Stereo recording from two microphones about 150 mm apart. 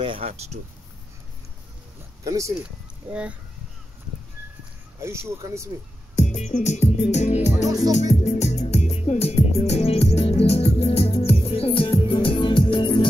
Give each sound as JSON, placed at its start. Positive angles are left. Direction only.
{"t": 0.0, "sound": "speech", "side_deg": -40}
{"t": 2.0, "sound": "a sound", "side_deg": -20}
{"t": 3.1, "sound": "speech", "side_deg": -10}
{"t": 5.0, "sound": "speech", "side_deg": -20}
{"t": 6.1, "sound": "music", "side_deg": 50}